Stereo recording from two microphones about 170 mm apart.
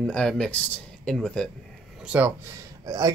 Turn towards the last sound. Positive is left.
turn(degrees=-25)  # may be behind; listen again after turning